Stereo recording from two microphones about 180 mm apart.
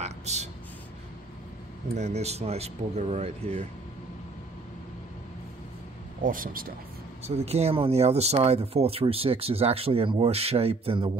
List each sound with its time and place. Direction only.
0.0 s a sound: 40° right (ahead or behind)
2.0 s speech: 35° right (ahead or behind)
6.2 s speech: 50° right (ahead or behind)
7.2 s speech: 35° right (ahead or behind)